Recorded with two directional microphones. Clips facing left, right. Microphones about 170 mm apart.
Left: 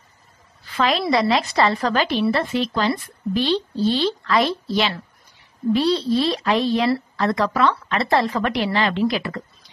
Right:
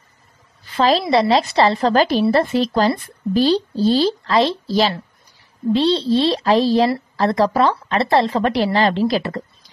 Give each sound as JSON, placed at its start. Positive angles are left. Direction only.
{"t": 0.7, "sound": "speech", "side_deg": -35}